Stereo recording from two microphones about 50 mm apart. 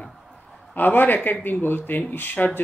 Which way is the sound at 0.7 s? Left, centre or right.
Left.